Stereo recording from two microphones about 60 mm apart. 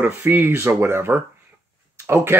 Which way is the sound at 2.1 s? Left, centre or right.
Right.